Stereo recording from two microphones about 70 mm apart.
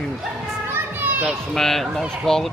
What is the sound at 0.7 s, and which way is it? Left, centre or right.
Children playing, right.